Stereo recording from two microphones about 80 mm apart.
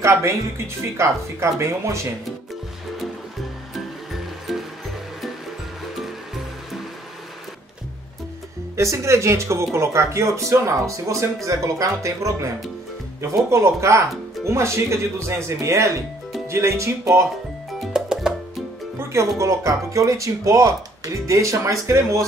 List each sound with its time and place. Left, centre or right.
0.9 s speech: right
3.7 s music: centre
8.7 s speech: right
17.7 s music: centre
18.9 s speech: right